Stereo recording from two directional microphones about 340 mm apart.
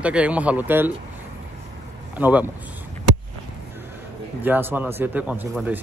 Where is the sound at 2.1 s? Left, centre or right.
Centre.